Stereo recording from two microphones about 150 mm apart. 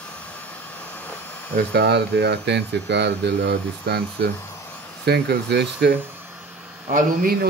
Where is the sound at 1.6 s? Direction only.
90° right.